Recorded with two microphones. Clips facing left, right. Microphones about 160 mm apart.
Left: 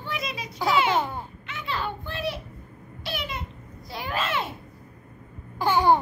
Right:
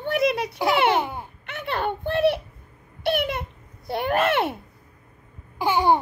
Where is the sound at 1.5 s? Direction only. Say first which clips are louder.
Right 5 dB; 60° right (ahead or behind).